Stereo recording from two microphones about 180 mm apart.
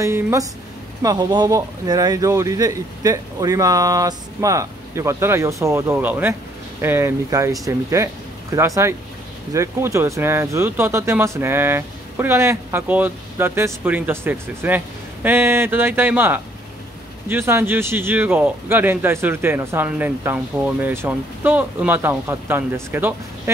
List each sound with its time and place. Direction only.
0.0 s speech: 15° right (ahead or behind)